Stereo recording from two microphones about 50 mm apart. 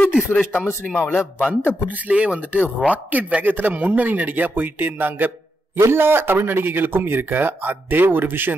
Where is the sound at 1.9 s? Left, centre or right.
Right.